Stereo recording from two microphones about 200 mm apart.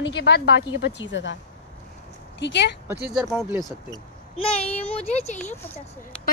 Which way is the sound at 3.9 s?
30° left (ahead or behind).